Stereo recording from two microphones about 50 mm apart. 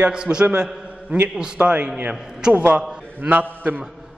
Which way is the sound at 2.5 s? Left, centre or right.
Right.